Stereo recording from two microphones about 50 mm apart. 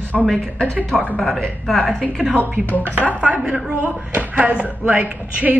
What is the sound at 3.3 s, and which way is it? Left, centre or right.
A man's voice, right.